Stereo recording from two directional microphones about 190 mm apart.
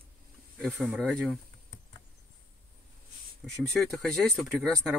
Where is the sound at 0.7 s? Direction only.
Centre (ahead or behind).